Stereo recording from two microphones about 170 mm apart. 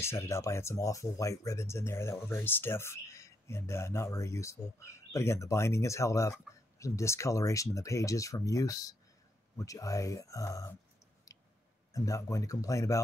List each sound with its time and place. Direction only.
0.0 s speech: 15° left (ahead or behind)
11.3 s a sound: 20° left (ahead or behind)
11.9 s speech: 20° left (ahead or behind)